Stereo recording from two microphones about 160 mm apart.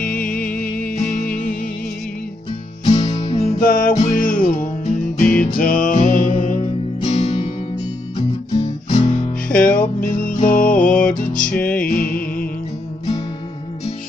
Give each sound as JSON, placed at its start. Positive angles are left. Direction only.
{"t": 0.0, "sound": "music", "side_deg": 60}
{"t": 2.9, "sound": "music", "side_deg": 45}
{"t": 3.6, "sound": "music", "side_deg": 60}
{"t": 3.9, "sound": "music", "side_deg": 50}
{"t": 9.5, "sound": "music", "side_deg": 10}
{"t": 9.8, "sound": "music", "side_deg": 60}
{"t": 10.9, "sound": "music", "side_deg": 5}
{"t": 11.9, "sound": "music", "side_deg": 65}